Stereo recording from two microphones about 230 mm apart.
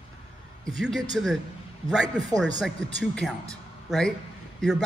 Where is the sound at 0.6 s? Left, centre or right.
Centre.